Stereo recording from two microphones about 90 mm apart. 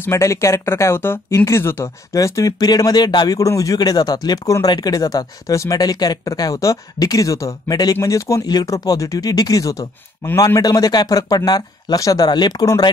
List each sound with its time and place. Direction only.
0.0 s speech: 30° left (ahead or behind)